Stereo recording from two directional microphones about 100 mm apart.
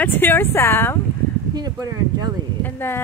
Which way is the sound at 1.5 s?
40° right (ahead or behind).